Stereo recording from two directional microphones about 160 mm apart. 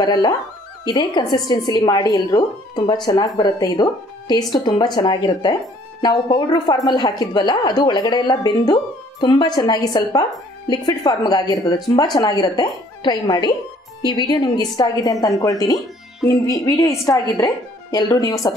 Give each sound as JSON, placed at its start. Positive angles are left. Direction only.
{"t": 0.0, "sound": "speech", "side_deg": 25}